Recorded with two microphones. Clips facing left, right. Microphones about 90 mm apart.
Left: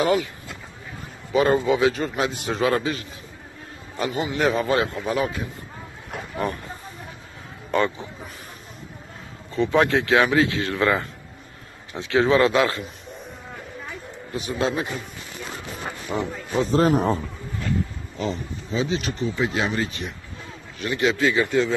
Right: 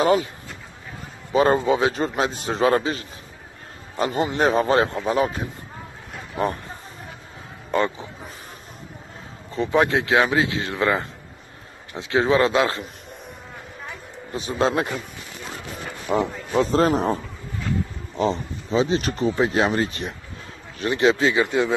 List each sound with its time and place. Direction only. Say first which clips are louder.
0.0 s speech: right 2 dB; 30° right (ahead or behind)
1.3 s speech: right 1 dB; 30° right (ahead or behind)
4.0 s a man's voice: right 3 dB; 45° right (ahead or behind)
4.5 s speech: right 2 dB; 35° right (ahead or behind)
6.3 s a sound: right 3 dB; 30° right (ahead or behind)
7.7 s a sound: even; 20° right (ahead or behind)
9.5 s speech: even; 25° right (ahead or behind)
14.3 s speech: right 3 dB; 30° right (ahead or behind)
14.7 s a man's voice: right 3 dB; 60° right (ahead or behind)
16.1 s speech: right 5 dB; 75° right (ahead or behind)
16.5 s a man's voice: right 1 dB; 45° right (ahead or behind)
18.1 s speech: right 6 dB; 35° right (ahead or behind); by 21.7 s 20° right (ahead or behind)